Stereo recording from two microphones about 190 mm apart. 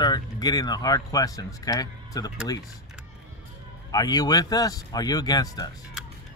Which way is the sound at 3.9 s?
20° left (ahead or behind).